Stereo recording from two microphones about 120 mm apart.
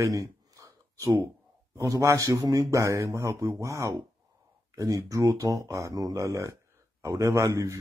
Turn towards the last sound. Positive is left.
turn(degrees=-25)  # may be behind; listen again after turning